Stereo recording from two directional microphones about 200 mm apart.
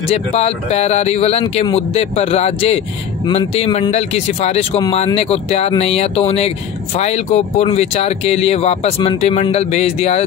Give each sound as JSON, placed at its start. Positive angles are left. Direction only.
{"t": 0.1, "sound": "speech", "side_deg": 30}